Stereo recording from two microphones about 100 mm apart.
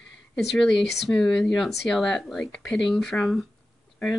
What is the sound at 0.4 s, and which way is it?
Speech, centre (ahead or behind).